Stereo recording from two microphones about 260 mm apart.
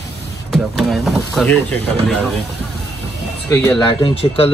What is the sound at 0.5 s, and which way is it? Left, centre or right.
Speech, centre.